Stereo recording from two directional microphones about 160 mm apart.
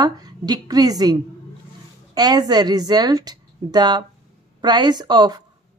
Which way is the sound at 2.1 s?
25° right (ahead or behind).